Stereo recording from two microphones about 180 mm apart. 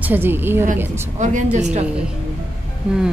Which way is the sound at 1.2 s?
45° right (ahead or behind).